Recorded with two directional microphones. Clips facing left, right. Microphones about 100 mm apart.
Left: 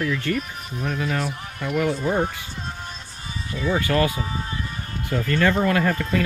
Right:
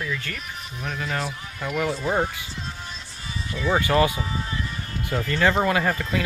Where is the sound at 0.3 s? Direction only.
15° left (ahead or behind).